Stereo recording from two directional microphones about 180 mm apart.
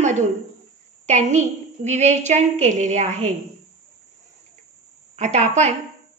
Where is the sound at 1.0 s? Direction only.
40° right (ahead or behind).